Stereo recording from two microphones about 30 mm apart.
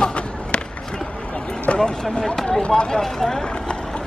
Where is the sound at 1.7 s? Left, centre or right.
Left.